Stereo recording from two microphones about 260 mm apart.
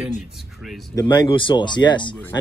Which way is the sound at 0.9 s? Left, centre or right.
Centre.